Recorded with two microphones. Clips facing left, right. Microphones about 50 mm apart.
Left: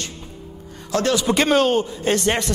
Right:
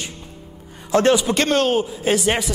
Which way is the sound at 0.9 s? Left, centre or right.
Right.